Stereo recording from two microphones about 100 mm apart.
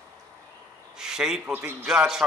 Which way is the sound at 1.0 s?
5° right (ahead or behind).